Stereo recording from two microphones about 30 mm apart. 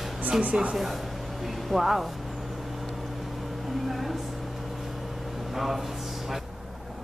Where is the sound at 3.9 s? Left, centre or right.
Centre.